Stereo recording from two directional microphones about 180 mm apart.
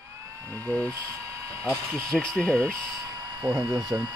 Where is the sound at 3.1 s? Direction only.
20° right (ahead or behind).